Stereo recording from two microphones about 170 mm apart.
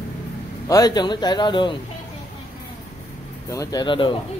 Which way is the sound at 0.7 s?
25° left (ahead or behind).